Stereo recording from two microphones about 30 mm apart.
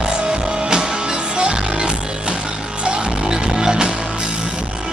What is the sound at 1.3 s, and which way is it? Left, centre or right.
Music, right.